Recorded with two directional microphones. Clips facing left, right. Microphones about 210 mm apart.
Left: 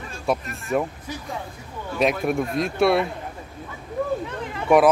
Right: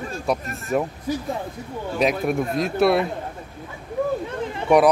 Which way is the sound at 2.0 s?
Centre (ahead or behind).